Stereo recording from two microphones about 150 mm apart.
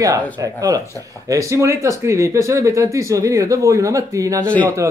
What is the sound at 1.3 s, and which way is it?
Speech, 20° right (ahead or behind).